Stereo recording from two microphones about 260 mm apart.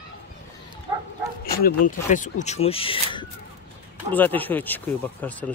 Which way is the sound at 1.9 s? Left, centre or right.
Left.